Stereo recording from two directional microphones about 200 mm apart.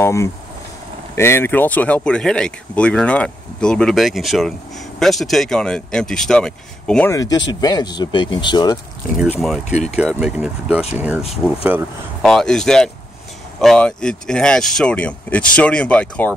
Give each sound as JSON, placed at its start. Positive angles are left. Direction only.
{"t": 0.0, "sound": "speech", "side_deg": 15}
{"t": 7.1, "sound": "speech", "side_deg": 20}
{"t": 9.7, "sound": "speech", "side_deg": 35}
{"t": 9.9, "sound": "speech", "side_deg": -5}